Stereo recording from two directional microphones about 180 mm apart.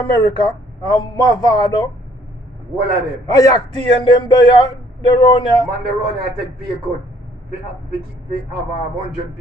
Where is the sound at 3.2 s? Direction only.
20° left (ahead or behind).